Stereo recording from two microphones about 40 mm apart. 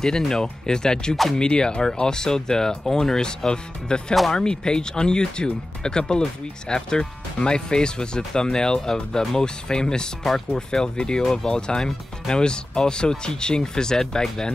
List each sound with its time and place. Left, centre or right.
0.3 s speech: centre